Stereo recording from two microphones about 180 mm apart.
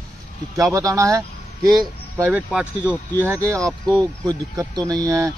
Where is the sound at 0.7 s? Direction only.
20° right (ahead or behind).